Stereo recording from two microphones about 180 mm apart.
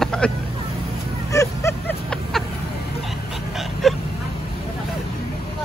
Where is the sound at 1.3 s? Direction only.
15° left (ahead or behind).